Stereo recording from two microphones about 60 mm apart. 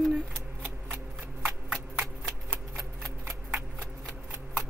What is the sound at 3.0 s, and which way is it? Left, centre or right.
Shuffling cards, right.